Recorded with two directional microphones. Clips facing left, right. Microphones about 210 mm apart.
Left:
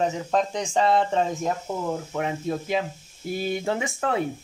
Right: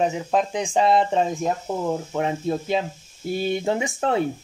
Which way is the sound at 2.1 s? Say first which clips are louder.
Right 3 dB; 30° right (ahead or behind).